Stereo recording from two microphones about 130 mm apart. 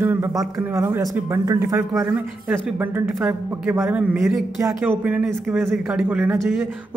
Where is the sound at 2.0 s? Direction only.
10° right (ahead or behind).